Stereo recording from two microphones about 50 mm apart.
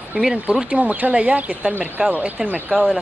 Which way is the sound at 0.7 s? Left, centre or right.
Right.